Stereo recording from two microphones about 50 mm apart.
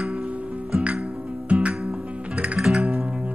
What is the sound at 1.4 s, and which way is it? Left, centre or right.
Music, right.